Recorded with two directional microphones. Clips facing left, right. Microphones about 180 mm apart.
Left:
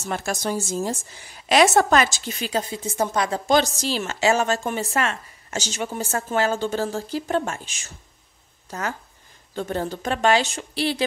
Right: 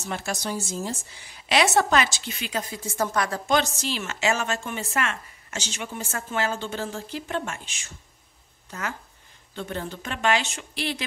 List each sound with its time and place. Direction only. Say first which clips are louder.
0.1 s a woman's voice: left 4 dB; 50° left (ahead or behind); by 3.4 s 20° left (ahead or behind)
3.4 s a woman's voice: left 6 dB; 35° left (ahead or behind)